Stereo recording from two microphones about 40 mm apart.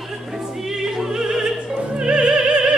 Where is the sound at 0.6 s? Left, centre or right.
Centre.